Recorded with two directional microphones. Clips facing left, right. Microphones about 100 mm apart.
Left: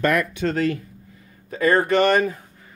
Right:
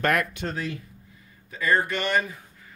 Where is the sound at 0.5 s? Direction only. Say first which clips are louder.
Left 9 dB; 65° left (ahead or behind).